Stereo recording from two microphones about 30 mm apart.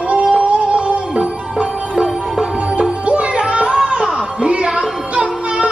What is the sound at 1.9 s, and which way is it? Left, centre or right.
Music, right.